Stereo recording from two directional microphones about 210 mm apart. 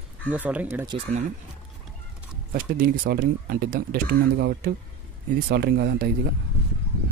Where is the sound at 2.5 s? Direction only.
40° right (ahead or behind).